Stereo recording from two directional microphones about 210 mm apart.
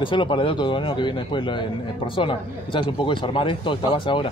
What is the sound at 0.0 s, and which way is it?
Speech, 25° left (ahead or behind).